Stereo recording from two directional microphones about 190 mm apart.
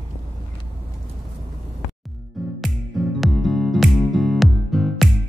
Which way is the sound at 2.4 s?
Centre (ahead or behind).